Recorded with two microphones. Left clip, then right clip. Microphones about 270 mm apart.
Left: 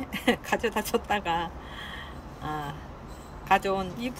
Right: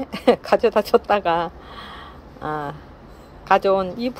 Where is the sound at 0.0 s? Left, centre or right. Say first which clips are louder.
Right 9 dB; centre.